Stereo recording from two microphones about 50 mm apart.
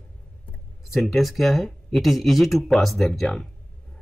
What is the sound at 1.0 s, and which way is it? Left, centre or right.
Speech, centre.